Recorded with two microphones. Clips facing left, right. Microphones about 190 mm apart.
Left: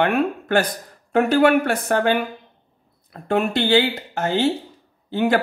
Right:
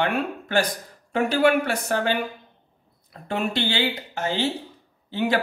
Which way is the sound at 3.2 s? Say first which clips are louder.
Left 6 dB; 55° left (ahead or behind).